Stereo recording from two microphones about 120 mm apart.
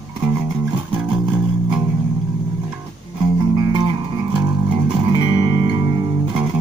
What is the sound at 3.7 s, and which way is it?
Music, 40° right (ahead or behind).